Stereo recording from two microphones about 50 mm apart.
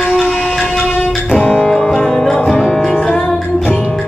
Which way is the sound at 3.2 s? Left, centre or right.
Centre.